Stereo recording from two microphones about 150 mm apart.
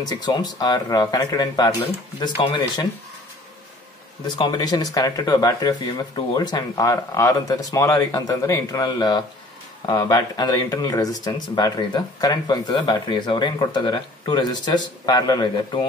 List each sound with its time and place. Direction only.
0.0 s speech: 25° left (ahead or behind)
4.4 s speech: 25° left (ahead or behind)